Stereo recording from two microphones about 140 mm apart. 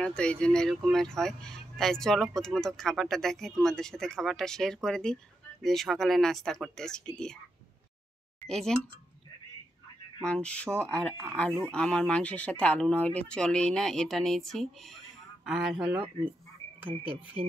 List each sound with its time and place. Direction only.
0.0 s speech: 5° left (ahead or behind)
8.4 s speech: 5° left (ahead or behind)
10.2 s speech: 10° left (ahead or behind); by 17.4 s 10° right (ahead or behind)